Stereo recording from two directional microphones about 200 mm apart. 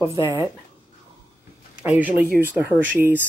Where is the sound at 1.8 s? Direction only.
5° right (ahead or behind).